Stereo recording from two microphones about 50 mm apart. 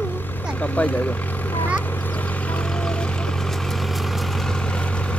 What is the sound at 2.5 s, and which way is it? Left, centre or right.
Vehicle, left.